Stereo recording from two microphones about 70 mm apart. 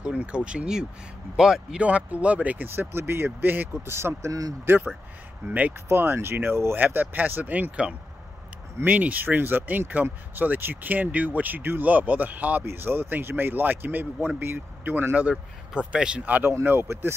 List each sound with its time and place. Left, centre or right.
0.0 s speech: centre
3.8 s a man's voice: right
4.3 s speech: right
5.5 s speech: right
5.9 s a man's voice: right
8.8 s a man's voice: right
15.2 s speech: centre
16.8 s a man's voice: right